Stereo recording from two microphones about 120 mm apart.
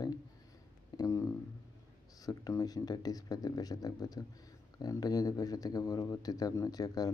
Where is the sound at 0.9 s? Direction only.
25° left (ahead or behind).